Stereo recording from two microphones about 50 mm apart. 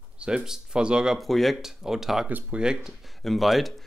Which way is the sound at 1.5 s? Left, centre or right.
Centre.